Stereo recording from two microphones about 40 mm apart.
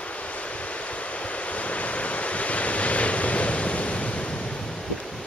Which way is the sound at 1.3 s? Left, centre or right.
Left.